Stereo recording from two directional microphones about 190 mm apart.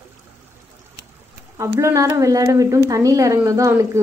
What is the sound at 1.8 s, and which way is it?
A woman's voice, 15° right (ahead or behind).